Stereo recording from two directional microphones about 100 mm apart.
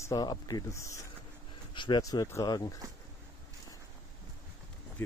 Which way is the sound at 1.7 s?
50° left (ahead or behind).